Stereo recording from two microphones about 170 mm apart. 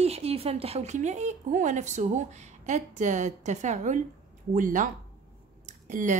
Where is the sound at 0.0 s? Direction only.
35° right (ahead or behind).